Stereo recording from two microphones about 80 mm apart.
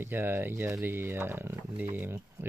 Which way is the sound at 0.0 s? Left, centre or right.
Right.